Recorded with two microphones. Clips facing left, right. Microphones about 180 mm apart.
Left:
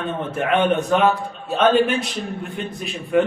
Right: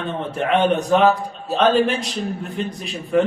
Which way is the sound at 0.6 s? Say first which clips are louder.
Right 2 dB; 40° right (ahead or behind).